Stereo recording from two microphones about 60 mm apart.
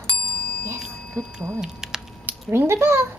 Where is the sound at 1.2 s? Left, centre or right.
Right.